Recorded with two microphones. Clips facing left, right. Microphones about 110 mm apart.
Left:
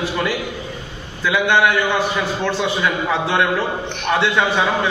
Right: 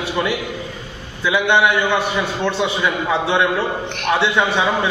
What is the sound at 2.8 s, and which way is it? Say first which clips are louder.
A man's voice: even; 15° right (ahead or behind).